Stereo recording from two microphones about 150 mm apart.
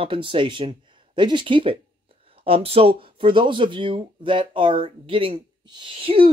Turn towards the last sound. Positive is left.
turn(degrees=-35)  # may be behind; listen again after turning